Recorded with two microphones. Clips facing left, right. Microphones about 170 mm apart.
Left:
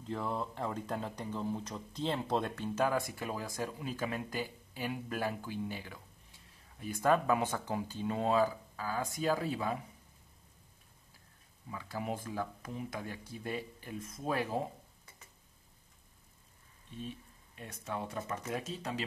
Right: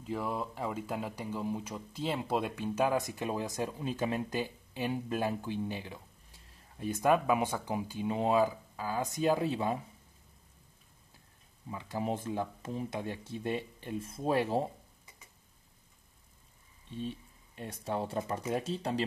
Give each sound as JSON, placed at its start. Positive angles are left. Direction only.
{"t": 0.0, "sound": "speech", "side_deg": -10}
{"t": 11.7, "sound": "speech", "side_deg": -20}
{"t": 17.0, "sound": "speech", "side_deg": -30}